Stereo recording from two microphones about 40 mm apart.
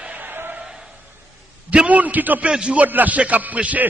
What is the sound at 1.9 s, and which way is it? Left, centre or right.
Speech, right.